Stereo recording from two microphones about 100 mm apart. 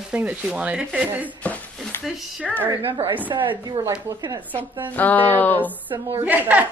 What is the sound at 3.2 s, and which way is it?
Speech, 55° right (ahead or behind).